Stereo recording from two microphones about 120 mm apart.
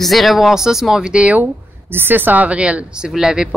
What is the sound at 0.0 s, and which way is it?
Speech, centre (ahead or behind).